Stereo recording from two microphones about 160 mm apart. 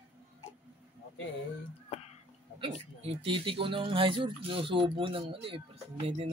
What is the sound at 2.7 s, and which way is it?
Speech, 35° right (ahead or behind).